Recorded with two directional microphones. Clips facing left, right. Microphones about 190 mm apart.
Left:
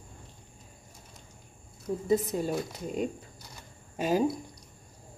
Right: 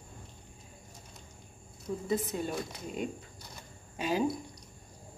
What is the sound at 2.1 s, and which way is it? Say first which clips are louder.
Speech: left 6 dB; 40° left (ahead or behind).